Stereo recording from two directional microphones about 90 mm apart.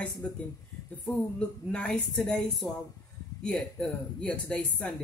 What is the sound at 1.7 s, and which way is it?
Speech, 10° left (ahead or behind).